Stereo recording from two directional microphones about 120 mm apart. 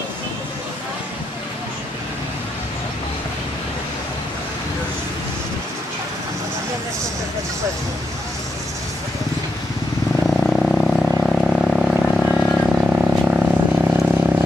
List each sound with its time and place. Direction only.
10.2 s vehicle: 5° left (ahead or behind); by 14.1 s 15° right (ahead or behind)